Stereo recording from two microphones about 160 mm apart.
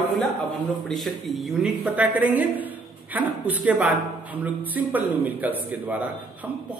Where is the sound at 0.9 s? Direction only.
Centre (ahead or behind).